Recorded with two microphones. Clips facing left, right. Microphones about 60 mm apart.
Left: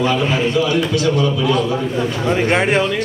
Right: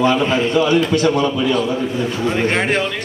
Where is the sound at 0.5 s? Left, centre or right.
Right.